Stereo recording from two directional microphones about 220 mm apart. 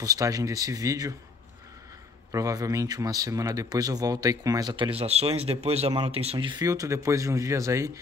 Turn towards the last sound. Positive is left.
turn(degrees=-15)  # may be behind; listen again after turning